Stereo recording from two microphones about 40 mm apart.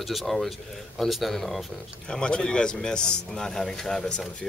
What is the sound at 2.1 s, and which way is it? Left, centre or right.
A man's voice, left.